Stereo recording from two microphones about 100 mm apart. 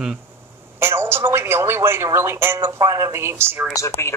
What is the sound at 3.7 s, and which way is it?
Speech, 25° left (ahead or behind).